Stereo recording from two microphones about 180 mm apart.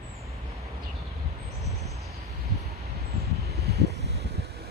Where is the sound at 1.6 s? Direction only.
Centre (ahead or behind).